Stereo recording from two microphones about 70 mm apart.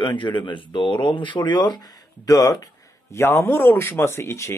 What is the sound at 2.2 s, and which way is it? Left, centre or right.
Speech, left.